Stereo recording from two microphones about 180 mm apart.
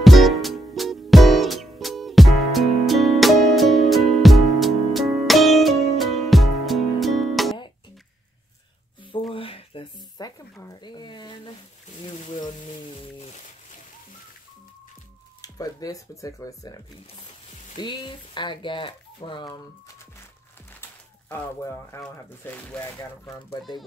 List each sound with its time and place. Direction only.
0.0 s music: centre (ahead or behind)
9.3 s a sound: 30° left (ahead or behind)
15.4 s speech: 20° left (ahead or behind)
21.3 s speech: 15° left (ahead or behind)